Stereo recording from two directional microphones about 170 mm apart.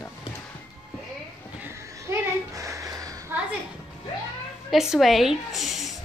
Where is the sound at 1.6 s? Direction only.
15° right (ahead or behind).